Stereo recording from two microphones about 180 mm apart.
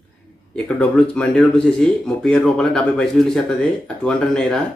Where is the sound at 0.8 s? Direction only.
5° left (ahead or behind).